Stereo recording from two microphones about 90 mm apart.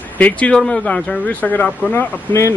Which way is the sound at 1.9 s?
30° left (ahead or behind).